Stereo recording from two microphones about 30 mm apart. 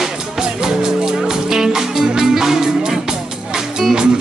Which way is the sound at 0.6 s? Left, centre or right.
Right.